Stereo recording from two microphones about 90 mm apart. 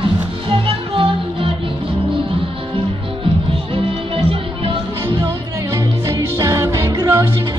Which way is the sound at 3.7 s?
90° right.